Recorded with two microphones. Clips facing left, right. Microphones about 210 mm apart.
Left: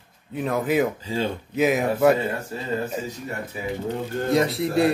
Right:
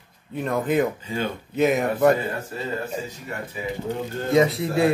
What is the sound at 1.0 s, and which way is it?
Speech, 30° left (ahead or behind).